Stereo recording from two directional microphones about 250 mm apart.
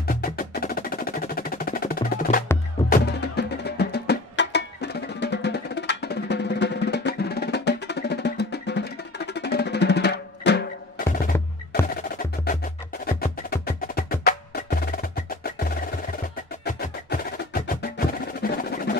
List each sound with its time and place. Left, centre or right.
0.0 s percussion: left
2.9 s music: left
13.0 s wood block: left
16.6 s wood block: left